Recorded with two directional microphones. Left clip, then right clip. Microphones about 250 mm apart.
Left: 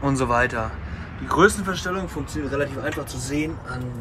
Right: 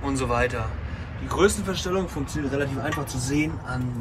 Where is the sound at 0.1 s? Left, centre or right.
Left.